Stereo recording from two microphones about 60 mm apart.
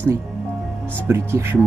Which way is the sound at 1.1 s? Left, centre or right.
Right.